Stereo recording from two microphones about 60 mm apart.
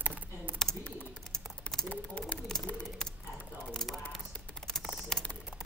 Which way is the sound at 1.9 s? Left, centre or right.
Left.